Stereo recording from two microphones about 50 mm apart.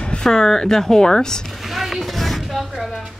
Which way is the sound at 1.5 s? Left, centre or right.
Centre.